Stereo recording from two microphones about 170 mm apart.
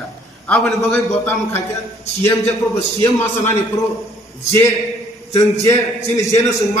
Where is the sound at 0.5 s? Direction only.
10° left (ahead or behind).